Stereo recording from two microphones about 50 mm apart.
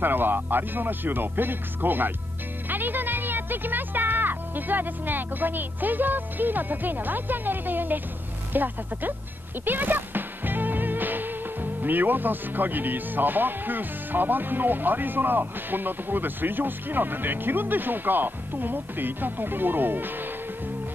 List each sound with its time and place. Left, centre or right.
0.0 s music: right